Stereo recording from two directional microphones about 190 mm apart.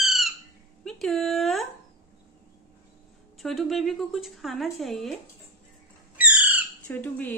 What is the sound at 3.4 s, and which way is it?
Speech, centre (ahead or behind).